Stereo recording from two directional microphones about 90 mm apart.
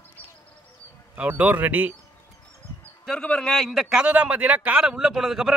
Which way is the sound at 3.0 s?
10° left (ahead or behind).